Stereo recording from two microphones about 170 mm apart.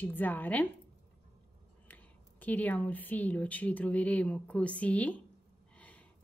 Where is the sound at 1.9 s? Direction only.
10° left (ahead or behind).